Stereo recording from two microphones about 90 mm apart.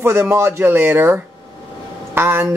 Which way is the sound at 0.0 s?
30° right (ahead or behind).